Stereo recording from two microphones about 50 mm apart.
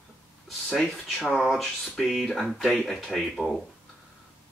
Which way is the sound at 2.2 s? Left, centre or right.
Centre.